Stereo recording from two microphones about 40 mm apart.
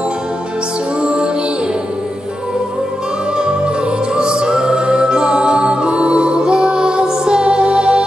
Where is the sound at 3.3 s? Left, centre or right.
Centre.